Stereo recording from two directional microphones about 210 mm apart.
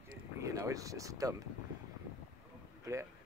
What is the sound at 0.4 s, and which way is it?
Speech, 15° right (ahead or behind).